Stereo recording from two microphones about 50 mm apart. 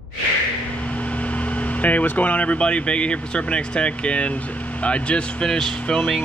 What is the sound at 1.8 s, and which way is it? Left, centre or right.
Speech, left.